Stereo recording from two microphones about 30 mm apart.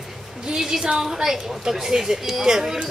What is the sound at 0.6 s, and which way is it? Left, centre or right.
Speech, centre.